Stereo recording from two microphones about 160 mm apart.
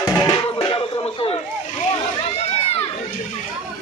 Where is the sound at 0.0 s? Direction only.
25° left (ahead or behind).